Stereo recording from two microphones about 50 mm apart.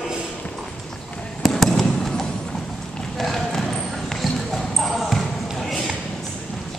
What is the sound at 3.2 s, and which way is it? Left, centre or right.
Basketball bounce, centre.